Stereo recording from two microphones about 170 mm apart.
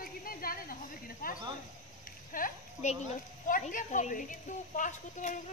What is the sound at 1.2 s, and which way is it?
A woman's voice, 55° left (ahead or behind).